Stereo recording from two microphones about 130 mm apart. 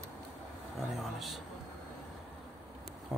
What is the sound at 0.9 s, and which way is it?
Speech, centre (ahead or behind).